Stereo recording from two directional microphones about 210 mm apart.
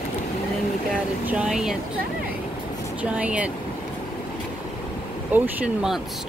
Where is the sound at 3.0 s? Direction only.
5° right (ahead or behind).